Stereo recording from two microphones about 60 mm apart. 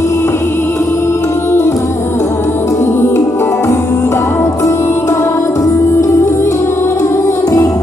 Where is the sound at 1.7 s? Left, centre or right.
Left.